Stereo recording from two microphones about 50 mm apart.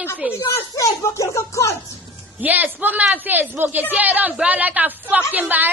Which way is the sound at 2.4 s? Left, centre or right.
Right.